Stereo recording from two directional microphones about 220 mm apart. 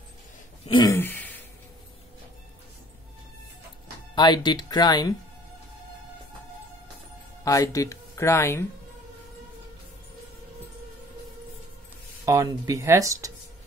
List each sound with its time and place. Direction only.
0.7 s throat clearing: 20° left (ahead or behind)
0.9 s throat clearing: 10° left (ahead or behind)
4.1 s speech: 20° left (ahead or behind)
7.4 s speech: 15° left (ahead or behind)
12.3 s speech: 15° right (ahead or behind)